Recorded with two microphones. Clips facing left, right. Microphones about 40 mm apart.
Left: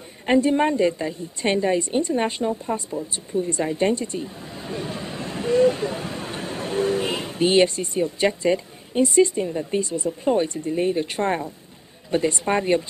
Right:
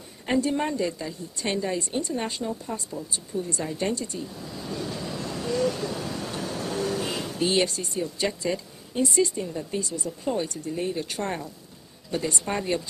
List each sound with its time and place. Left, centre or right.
0.3 s a woman's voice: left